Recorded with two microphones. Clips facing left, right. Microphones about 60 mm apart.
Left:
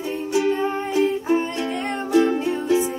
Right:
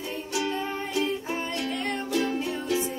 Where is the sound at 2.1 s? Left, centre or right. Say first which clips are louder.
Left 11 dB; left.